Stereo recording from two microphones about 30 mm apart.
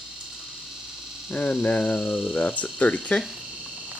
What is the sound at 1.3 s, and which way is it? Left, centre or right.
Hum, left.